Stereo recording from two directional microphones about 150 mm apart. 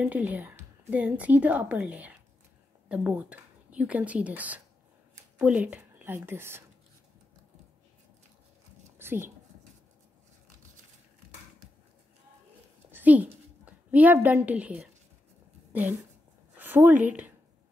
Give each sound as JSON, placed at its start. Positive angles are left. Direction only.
{"t": 0.0, "sound": "a woman's voice", "side_deg": -10}
{"t": 8.9, "sound": "a sound", "side_deg": -15}
{"t": 12.9, "sound": "a woman's voice", "side_deg": -10}